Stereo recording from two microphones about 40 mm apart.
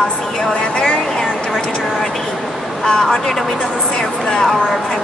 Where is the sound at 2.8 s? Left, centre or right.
Centre.